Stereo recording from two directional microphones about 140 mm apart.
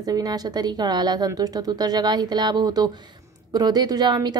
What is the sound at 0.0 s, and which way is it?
A woman's voice, 25° right (ahead or behind).